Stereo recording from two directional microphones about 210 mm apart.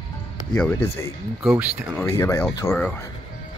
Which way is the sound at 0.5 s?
10° left (ahead or behind).